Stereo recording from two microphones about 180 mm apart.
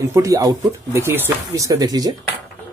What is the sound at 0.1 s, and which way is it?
Speech, 15° right (ahead or behind).